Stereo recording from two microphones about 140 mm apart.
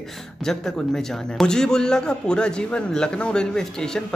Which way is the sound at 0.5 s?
5° left (ahead or behind).